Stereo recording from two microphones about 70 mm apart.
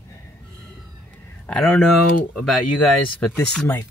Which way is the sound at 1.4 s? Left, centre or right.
Centre.